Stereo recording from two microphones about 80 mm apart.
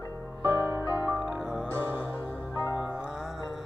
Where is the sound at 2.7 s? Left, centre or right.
Centre.